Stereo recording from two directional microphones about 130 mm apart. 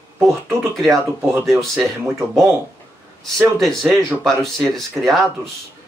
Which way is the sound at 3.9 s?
20° right (ahead or behind).